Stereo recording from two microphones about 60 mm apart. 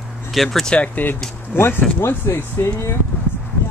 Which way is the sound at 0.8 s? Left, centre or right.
Left.